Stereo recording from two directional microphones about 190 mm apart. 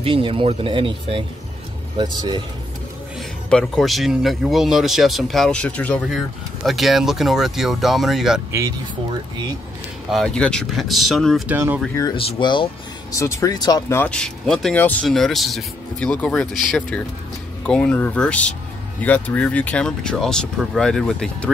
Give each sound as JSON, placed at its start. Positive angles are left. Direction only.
{"t": 0.0, "sound": "speech", "side_deg": -30}
{"t": 3.2, "sound": "speech", "side_deg": 5}
{"t": 8.5, "sound": "speech", "side_deg": -15}
{"t": 10.1, "sound": "speech", "side_deg": 5}
{"t": 11.5, "sound": "speech", "side_deg": -10}
{"t": 11.9, "sound": "speech", "side_deg": 20}